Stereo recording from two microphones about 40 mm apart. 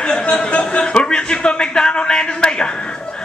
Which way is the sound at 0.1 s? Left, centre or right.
Left.